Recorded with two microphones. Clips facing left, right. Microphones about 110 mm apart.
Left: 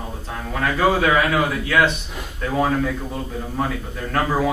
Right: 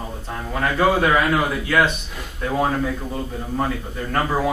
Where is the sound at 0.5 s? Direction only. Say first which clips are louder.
Even; centre (ahead or behind).